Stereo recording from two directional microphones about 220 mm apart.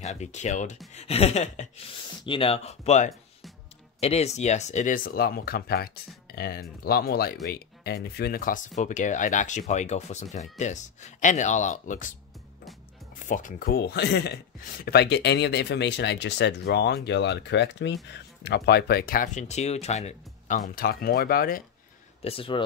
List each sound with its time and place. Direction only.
0.0 s speech: 30° left (ahead or behind)
13.3 s speech: 35° left (ahead or behind)
22.2 s speech: 25° left (ahead or behind)